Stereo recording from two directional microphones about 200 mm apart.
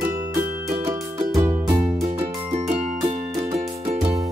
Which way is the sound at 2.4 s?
30° right (ahead or behind).